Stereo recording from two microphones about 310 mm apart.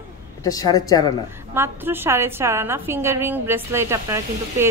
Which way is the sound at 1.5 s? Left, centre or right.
Centre.